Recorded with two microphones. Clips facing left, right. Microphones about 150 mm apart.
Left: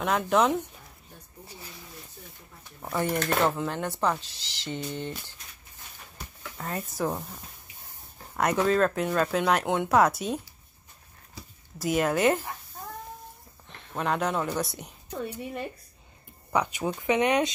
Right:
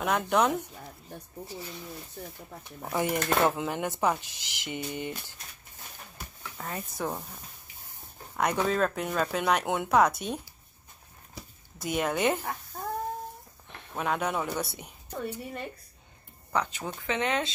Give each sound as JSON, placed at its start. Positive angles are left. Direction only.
{"t": 0.0, "sound": "speech", "side_deg": 0}
{"t": 2.2, "sound": "speech", "side_deg": -65}
{"t": 2.9, "sound": "speech", "side_deg": -10}
{"t": 6.1, "sound": "a sound", "side_deg": 0}
{"t": 8.4, "sound": "speech", "side_deg": 0}
{"t": 11.8, "sound": "speech", "side_deg": 0}
{"t": 13.9, "sound": "speech", "side_deg": -5}
{"t": 15.2, "sound": "speech", "side_deg": 10}